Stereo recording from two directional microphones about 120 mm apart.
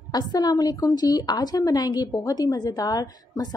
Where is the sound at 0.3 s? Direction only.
35° left (ahead or behind).